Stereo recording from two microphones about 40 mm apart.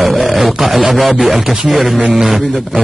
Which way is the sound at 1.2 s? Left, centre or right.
Centre.